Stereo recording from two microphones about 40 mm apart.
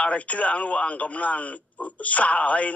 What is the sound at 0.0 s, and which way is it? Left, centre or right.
A man's voice, left.